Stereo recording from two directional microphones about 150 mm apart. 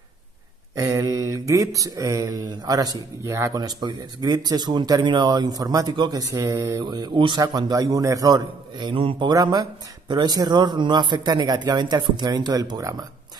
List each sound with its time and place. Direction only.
0.7 s mantra: 20° right (ahead or behind)